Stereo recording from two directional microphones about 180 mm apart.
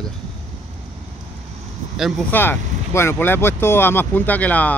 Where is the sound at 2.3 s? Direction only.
10° left (ahead or behind).